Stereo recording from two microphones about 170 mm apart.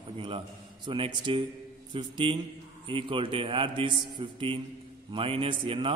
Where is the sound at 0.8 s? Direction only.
30° right (ahead or behind).